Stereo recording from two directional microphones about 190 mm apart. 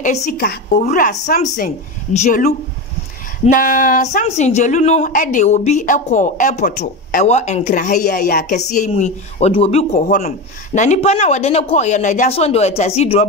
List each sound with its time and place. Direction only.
0.0 s speech: 40° left (ahead or behind)
0.4 s a woman's voice: 55° left (ahead or behind)
0.8 s speech: 40° left (ahead or behind)
7.2 s speech: 35° left (ahead or behind)